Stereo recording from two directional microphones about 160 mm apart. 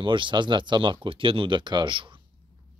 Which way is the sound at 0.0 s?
30° right (ahead or behind).